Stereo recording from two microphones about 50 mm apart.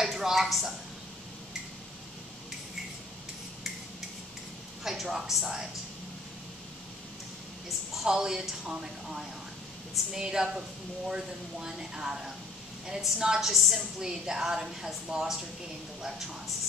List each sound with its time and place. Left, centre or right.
0.0 s a woman's voice: centre
4.8 s a woman's voice: centre
7.9 s a woman's voice: centre